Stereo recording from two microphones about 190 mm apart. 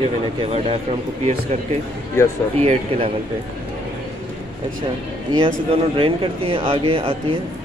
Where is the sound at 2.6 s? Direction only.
35° right (ahead or behind).